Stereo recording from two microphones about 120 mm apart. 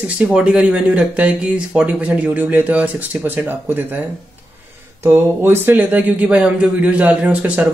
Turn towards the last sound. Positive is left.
turn(degrees=-10)  # may be behind; listen again after turning